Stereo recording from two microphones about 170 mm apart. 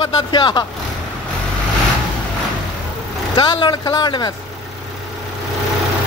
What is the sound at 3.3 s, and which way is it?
Speech, 30° left (ahead or behind).